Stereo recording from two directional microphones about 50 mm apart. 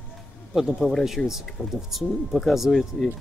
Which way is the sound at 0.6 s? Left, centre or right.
Centre.